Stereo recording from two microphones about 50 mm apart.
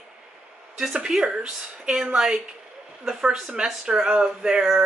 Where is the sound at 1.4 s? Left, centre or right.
Right.